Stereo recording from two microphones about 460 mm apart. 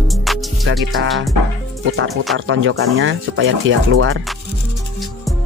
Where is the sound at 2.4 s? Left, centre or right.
Right.